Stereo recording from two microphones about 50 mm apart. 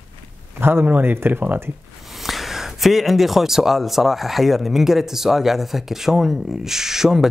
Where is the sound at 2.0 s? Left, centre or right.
Centre.